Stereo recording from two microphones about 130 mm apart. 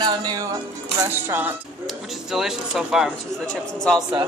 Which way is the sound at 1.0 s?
15° right (ahead or behind).